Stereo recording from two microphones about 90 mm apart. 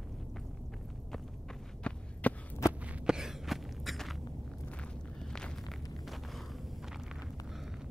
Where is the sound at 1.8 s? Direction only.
10° left (ahead or behind).